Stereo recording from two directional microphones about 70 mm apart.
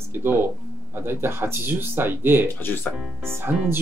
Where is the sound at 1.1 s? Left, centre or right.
Right.